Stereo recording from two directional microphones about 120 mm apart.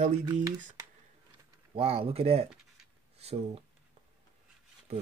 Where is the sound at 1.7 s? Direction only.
50° right (ahead or behind).